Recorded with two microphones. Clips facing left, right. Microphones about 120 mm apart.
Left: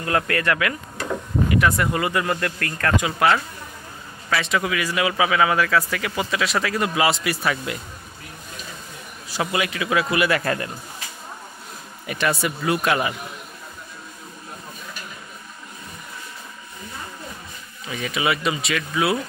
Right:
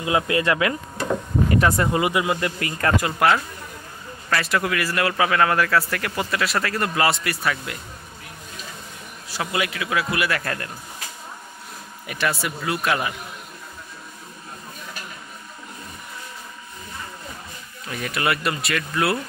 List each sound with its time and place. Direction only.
0.0 s a man's voice: 15° right (ahead or behind); by 7.8 s 5° left (ahead or behind)
9.3 s a man's voice: centre (ahead or behind)
12.1 s a man's voice: centre (ahead or behind)
17.8 s a man's voice: centre (ahead or behind)